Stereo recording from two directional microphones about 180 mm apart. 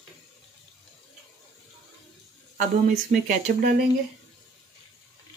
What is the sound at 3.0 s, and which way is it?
Speech, 45° right (ahead or behind).